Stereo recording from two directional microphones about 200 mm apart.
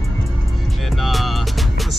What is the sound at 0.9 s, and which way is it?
Music, centre (ahead or behind).